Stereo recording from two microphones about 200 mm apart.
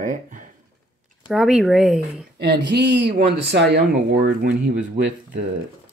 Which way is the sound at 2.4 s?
55° right (ahead or behind).